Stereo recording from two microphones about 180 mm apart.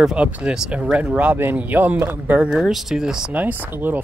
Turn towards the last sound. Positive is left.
turn(degrees=-10)  # may be behind; listen again after turning